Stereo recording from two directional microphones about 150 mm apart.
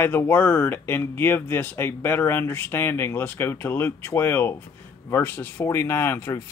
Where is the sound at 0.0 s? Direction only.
15° left (ahead or behind).